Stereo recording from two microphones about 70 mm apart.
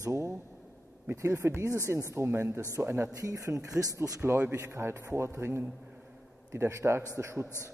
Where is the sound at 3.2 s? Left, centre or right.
Right.